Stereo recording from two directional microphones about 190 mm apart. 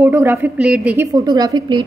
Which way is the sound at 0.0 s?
15° right (ahead or behind).